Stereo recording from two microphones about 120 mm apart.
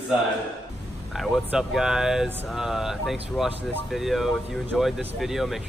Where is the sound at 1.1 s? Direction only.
Centre (ahead or behind).